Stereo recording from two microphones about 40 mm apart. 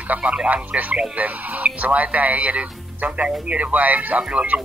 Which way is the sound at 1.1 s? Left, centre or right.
Right.